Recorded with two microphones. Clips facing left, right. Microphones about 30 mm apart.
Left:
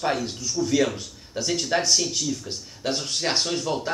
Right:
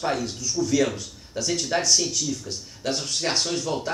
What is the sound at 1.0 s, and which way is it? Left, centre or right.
Speech, left.